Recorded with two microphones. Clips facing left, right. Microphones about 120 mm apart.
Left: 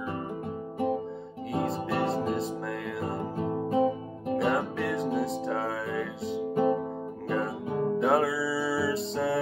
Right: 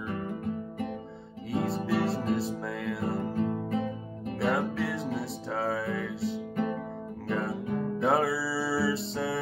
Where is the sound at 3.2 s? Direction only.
30° left (ahead or behind).